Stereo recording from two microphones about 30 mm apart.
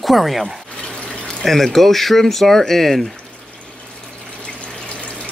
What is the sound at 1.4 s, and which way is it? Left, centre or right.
Speech, centre.